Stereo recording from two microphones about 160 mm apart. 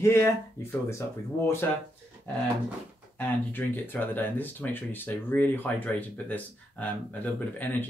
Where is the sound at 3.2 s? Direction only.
10° left (ahead or behind).